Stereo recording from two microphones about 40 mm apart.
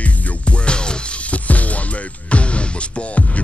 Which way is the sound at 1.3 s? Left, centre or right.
Left.